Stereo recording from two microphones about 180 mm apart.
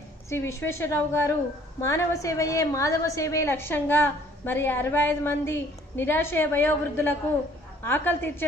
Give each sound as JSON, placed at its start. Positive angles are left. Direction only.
{"t": 0.3, "sound": "a woman's voice", "side_deg": 15}